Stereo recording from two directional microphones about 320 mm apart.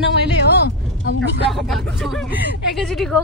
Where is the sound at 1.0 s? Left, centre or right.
Left.